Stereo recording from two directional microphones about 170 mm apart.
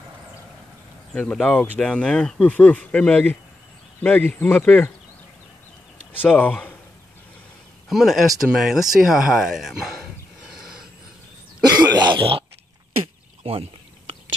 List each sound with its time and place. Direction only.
1.1 s speech: 5° left (ahead or behind)
6.1 s speech: 10° left (ahead or behind)
7.9 s speech: centre (ahead or behind)
8.9 s a sound: centre (ahead or behind)
12.0 s throat clearing: 30° right (ahead or behind)
13.4 s a sound: 35° right (ahead or behind)